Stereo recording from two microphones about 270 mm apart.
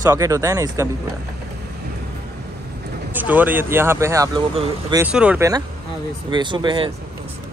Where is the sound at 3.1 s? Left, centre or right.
Centre.